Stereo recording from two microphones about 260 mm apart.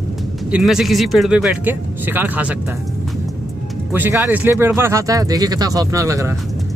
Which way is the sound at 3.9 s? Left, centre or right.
Centre.